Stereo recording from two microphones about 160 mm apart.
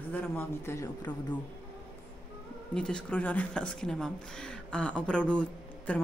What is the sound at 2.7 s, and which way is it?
Speech, 5° left (ahead or behind).